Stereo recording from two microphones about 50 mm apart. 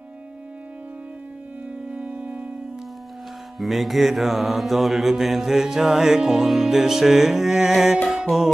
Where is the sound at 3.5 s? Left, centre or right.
Centre.